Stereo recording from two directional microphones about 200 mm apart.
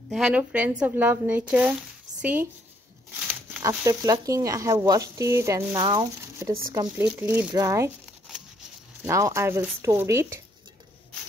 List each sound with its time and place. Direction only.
0.1 s speech: 5° right (ahead or behind)
3.6 s speech: 15° right (ahead or behind)
9.0 s speech: 15° right (ahead or behind)